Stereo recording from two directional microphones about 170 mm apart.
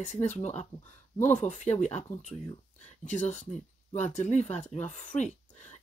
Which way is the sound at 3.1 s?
45° left (ahead or behind).